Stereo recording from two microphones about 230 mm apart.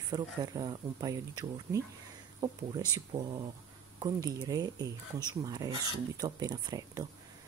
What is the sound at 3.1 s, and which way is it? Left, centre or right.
Speech, right.